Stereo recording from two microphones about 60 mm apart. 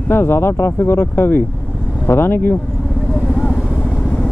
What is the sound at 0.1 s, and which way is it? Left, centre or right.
Speech, left.